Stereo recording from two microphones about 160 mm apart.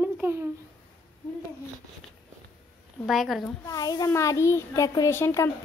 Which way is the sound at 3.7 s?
20° left (ahead or behind).